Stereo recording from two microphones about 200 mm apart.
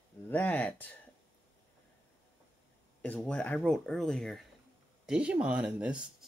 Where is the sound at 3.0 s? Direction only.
5° left (ahead or behind).